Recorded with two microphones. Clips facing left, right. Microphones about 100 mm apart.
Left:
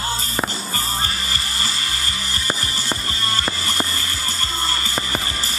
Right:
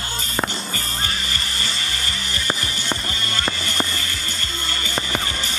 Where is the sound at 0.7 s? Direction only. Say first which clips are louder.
Left 3 dB; 35° left (ahead or behind).